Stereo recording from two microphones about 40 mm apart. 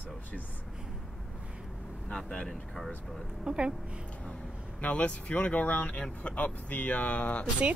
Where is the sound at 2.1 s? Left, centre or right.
Left.